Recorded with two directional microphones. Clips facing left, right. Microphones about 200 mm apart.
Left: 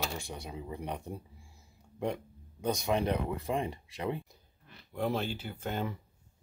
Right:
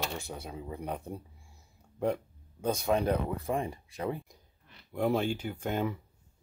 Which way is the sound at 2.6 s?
15° left (ahead or behind).